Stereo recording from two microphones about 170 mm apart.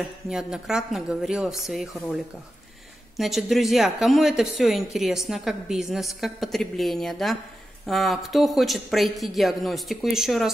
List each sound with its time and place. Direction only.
0.3 s speech: 5° right (ahead or behind)
3.2 s speech: centre (ahead or behind)